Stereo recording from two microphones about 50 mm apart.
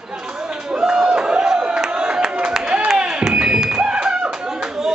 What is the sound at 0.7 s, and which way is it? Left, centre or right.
Crowd, centre.